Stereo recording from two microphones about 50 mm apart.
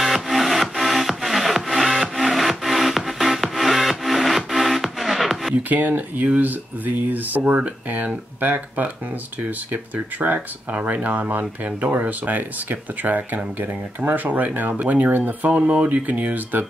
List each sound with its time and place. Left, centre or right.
0.0 s music: centre
5.5 s speech: right
9.9 s speech: right
15.5 s speech: right